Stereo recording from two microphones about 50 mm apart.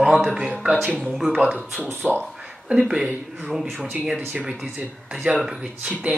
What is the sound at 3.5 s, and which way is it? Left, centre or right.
Speech, centre.